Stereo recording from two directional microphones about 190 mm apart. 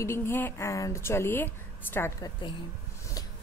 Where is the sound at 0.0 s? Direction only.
15° left (ahead or behind).